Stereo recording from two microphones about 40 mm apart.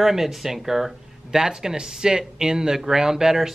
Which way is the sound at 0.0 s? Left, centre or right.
Centre.